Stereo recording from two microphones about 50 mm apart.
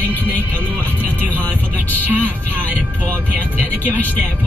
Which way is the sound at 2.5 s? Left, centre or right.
Right.